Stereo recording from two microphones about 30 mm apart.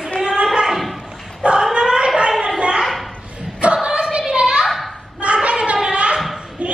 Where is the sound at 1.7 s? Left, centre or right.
Right.